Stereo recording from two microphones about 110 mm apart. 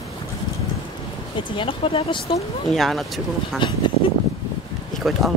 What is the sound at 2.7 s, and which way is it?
Speech, centre (ahead or behind).